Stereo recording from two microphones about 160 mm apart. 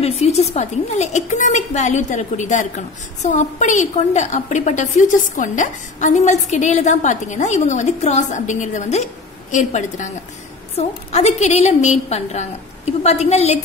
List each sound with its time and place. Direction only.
0.0 s a woman's voice: 40° left (ahead or behind)